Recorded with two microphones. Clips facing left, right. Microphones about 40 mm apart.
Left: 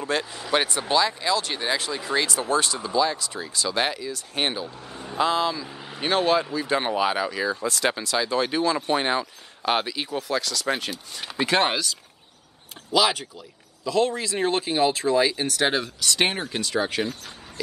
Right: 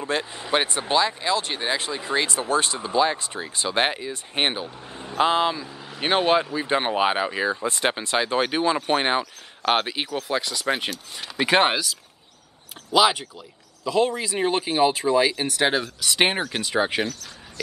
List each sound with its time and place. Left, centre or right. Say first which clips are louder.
0.0 s speech: even; right
5.7 s vehicle: even; centre
5.9 s speech: right 1 dB; right
11.7 s speech: right 1 dB; centre
16.5 s speech: right 2 dB; centre